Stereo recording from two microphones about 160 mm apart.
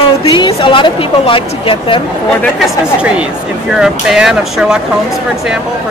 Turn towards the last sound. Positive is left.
turn(degrees=-5)  # may be behind; listen again after turning